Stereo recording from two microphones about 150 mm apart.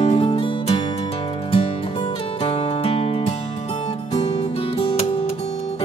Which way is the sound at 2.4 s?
40° left (ahead or behind).